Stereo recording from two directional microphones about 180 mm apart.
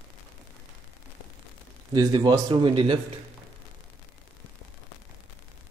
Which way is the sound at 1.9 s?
20° right (ahead or behind).